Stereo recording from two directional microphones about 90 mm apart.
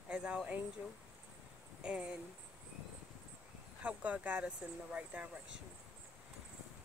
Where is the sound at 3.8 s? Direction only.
15° right (ahead or behind).